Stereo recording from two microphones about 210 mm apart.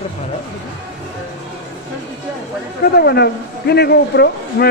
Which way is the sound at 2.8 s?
50° left (ahead or behind).